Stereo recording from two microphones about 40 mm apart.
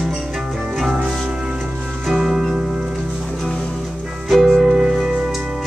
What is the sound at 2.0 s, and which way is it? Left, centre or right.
Music, centre.